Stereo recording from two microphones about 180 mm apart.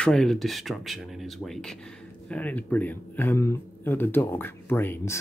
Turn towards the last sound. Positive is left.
turn(degrees=10)  # may be behind; listen again after turning